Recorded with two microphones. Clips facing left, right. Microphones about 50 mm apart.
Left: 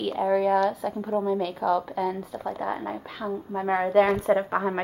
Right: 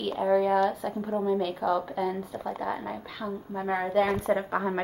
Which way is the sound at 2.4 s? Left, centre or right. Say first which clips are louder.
Left 3 dB; centre.